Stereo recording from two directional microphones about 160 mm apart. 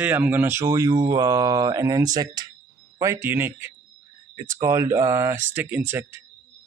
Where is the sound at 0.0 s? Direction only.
10° right (ahead or behind).